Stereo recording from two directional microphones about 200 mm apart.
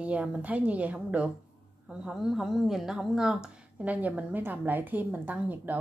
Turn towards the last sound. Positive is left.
turn(degrees=-10)  # may be behind; listen again after turning